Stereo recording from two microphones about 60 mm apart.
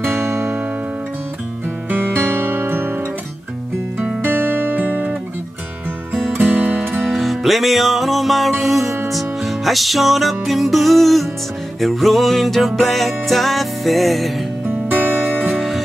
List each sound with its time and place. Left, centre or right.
0.1 s music: right
1.9 s music: right
4.2 s music: right
6.3 s music: right
7.0 s music: centre
14.7 s music: right